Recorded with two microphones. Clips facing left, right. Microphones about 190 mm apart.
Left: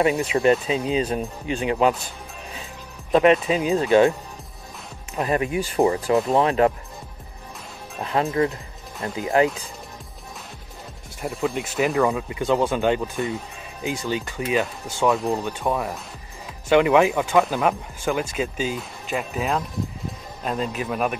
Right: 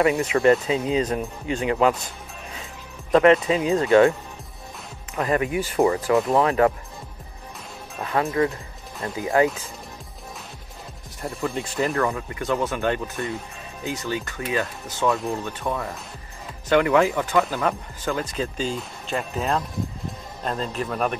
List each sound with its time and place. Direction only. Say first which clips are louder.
0.0 s speech: right 1 dB; 25° left (ahead or behind)
3.2 s speech: right 1 dB; 20° left (ahead or behind)
5.1 s speech: even; 20° left (ahead or behind)
8.0 s speech: left 1 dB; 25° left (ahead or behind)
11.6 s speech: left 1 dB; 5° left (ahead or behind)
11.9 s speech: left 3 dB; 15° left (ahead or behind)